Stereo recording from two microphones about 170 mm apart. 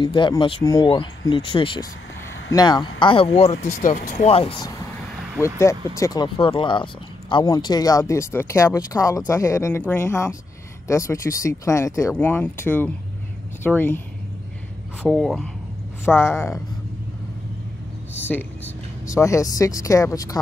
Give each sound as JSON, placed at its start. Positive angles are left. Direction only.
{"t": 0.0, "sound": "speech", "side_deg": 30}
{"t": 3.9, "sound": "speech", "side_deg": 45}
{"t": 5.4, "sound": "speech", "side_deg": 15}
{"t": 15.0, "sound": "speech", "side_deg": 0}
{"t": 16.1, "sound": "speech", "side_deg": 15}
{"t": 18.1, "sound": "speech", "side_deg": 10}